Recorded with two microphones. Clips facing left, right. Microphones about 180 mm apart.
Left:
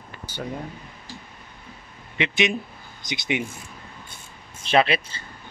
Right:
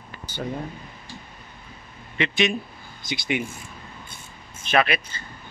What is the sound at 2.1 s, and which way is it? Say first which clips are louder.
Speech: even; 15° left (ahead or behind).